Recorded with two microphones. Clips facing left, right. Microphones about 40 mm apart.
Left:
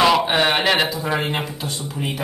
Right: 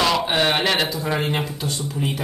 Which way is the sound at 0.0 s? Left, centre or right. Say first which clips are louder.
Left 3 dB; centre.